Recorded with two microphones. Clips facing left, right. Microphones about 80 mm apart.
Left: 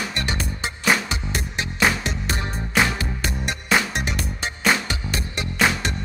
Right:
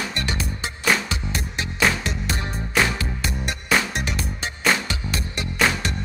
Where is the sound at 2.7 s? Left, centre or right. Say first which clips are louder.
Left 1 dB; left.